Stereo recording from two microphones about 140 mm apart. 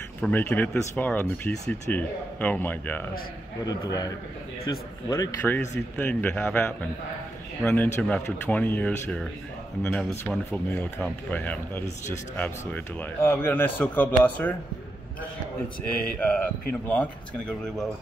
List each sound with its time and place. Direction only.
0.2 s speech: 10° left (ahead or behind)
3.6 s speech: 25° left (ahead or behind)
15.8 s speech: 10° left (ahead or behind)